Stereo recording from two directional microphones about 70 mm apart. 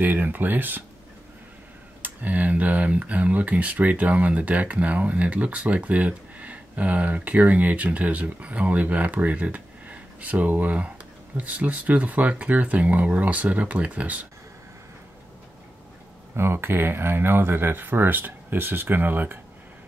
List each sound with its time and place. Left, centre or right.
0.0 s speech: right
2.0 s speech: right
16.3 s speech: right